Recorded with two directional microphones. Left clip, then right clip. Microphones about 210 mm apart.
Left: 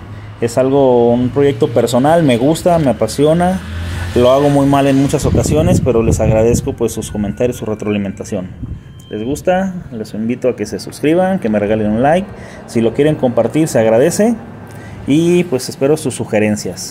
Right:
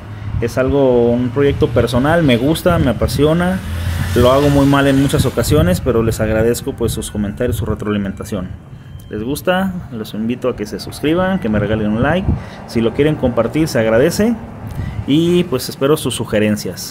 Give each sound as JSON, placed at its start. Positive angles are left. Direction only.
{"t": 0.4, "sound": "speech", "side_deg": 10}
{"t": 9.4, "sound": "speech", "side_deg": -5}